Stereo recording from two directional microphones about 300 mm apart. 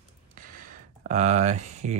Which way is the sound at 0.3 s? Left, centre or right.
Right.